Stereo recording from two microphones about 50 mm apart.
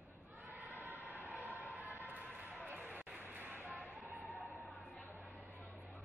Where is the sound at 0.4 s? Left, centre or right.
Right.